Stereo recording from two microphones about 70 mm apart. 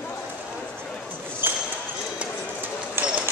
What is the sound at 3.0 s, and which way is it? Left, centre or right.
Run, right.